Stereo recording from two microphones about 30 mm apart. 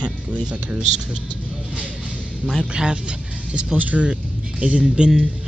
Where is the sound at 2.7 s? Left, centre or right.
Right.